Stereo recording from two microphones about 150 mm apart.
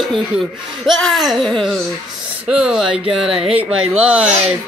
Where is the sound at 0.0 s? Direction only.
Centre (ahead or behind).